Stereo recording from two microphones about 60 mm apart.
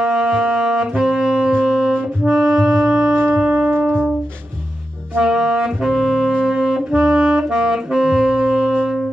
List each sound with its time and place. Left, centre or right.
0.0 s saxophone: centre
2.2 s music: centre
3.7 s music: right
5.2 s saxophone: centre